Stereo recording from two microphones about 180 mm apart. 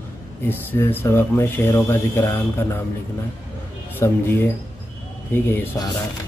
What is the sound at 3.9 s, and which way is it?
Speech, 10° left (ahead or behind).